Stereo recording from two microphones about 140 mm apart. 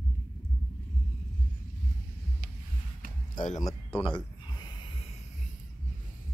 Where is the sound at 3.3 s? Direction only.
65° left (ahead or behind).